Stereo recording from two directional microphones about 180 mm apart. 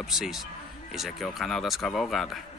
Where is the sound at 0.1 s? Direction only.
Centre (ahead or behind).